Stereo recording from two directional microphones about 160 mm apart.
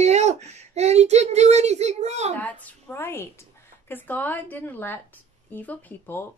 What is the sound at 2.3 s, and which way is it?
A woman's voice, 10° left (ahead or behind).